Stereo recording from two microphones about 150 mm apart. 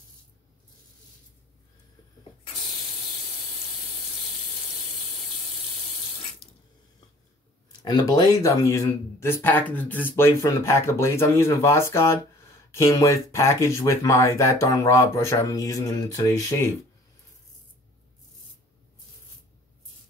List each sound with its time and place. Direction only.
7.8 s speech: 25° left (ahead or behind)